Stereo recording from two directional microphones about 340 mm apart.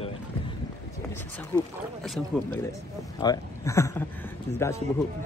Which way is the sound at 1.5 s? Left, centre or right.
Centre.